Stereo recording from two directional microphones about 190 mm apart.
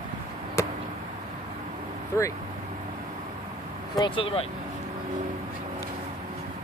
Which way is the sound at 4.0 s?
30° left (ahead or behind).